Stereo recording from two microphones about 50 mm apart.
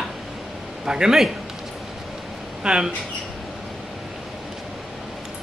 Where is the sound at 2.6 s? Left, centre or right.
Centre.